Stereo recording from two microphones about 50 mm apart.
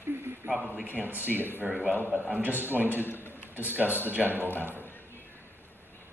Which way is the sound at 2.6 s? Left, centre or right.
Right.